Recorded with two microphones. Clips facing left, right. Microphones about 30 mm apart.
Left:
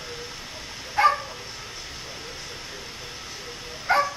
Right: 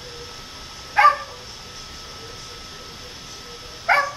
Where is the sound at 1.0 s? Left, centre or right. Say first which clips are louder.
Right 5 dB; right.